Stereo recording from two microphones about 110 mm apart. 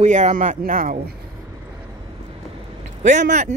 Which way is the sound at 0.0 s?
90° right.